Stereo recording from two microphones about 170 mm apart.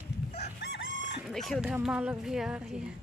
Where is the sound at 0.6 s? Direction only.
80° left.